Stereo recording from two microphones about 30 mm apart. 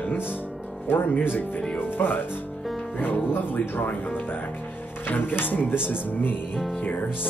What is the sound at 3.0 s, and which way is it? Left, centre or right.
Speech, left.